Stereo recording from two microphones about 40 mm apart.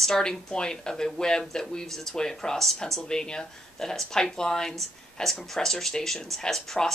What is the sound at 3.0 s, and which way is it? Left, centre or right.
Speech, centre.